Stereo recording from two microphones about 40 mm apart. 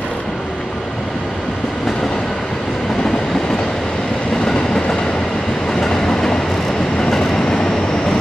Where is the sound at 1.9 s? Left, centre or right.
Centre.